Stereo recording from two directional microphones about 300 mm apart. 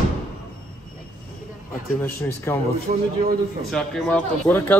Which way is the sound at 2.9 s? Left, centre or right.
Right.